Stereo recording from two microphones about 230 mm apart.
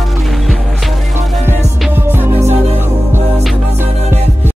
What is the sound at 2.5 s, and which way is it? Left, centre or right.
Music, right.